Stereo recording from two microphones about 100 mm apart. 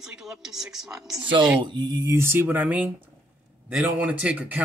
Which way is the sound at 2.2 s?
20° right (ahead or behind).